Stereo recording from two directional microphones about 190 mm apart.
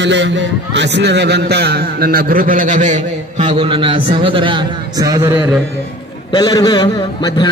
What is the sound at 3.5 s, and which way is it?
A man's voice, 25° right (ahead or behind).